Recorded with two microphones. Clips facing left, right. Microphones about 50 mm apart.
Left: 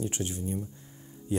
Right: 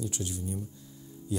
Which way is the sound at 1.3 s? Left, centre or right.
Left.